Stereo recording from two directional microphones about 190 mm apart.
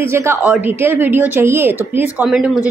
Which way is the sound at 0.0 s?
15° right (ahead or behind).